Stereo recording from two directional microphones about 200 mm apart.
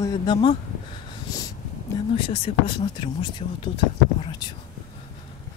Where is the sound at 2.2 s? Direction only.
25° left (ahead or behind).